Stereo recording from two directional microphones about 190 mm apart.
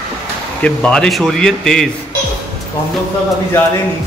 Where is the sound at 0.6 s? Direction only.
5° left (ahead or behind).